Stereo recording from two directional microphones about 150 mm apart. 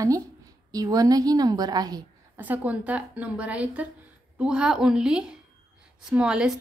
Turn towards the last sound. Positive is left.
turn(degrees=-5)  # may be behind; listen again after turning